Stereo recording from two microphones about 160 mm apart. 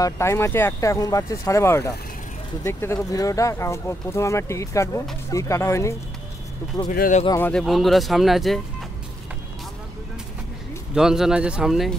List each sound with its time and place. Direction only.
0.0 s speech: 15° left (ahead or behind)
6.9 s speech: 55° left (ahead or behind)
7.2 s speech: 15° left (ahead or behind)
7.6 s speech: centre (ahead or behind)
11.0 s speech: 5° right (ahead or behind)